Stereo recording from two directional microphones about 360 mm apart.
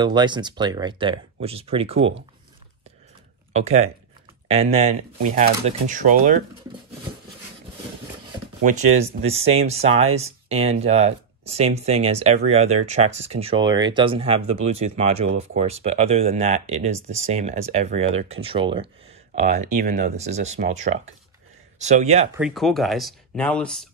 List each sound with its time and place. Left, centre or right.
0.0 s speech: centre
3.5 s speech: centre
9.0 s speech: centre
22.3 s speech: centre